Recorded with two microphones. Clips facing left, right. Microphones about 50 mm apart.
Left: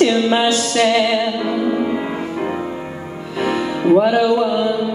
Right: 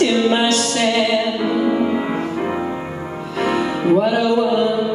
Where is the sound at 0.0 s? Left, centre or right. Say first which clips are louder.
Left 1 dB; centre.